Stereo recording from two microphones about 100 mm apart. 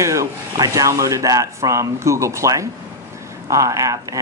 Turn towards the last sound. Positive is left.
turn(degrees=-35)  # may be behind; listen again after turning